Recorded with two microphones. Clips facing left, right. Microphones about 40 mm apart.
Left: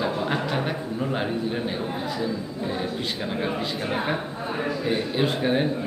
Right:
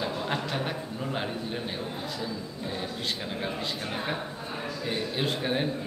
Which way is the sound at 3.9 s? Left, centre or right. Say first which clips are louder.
Left 6 dB; left.